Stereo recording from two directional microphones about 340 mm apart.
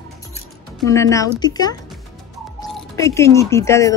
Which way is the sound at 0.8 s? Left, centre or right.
Centre.